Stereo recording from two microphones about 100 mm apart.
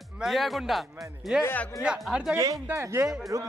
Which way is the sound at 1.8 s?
5° right (ahead or behind).